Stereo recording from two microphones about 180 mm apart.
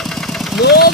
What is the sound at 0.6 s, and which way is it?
Speech, 60° left (ahead or behind).